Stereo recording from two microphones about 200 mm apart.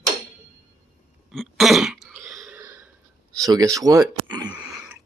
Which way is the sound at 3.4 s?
15° right (ahead or behind).